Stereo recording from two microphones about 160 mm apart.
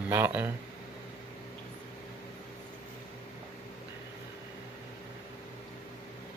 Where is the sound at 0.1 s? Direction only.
10° right (ahead or behind).